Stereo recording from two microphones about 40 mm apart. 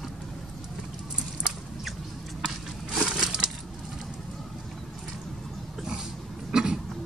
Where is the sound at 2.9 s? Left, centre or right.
Centre.